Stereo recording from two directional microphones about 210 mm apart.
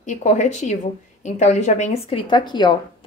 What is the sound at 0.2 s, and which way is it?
Speech, 35° left (ahead or behind).